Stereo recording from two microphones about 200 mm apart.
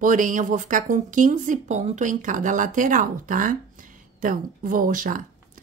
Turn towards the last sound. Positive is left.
turn(degrees=-40)  # may be behind; listen again after turning